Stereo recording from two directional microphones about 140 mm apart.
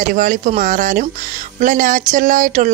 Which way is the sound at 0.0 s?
70° right (ahead or behind).